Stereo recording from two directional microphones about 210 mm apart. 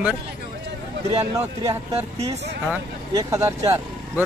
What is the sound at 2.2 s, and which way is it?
Speech, 30° right (ahead or behind).